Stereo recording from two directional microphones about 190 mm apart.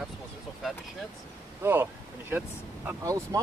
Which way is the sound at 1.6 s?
10° right (ahead or behind).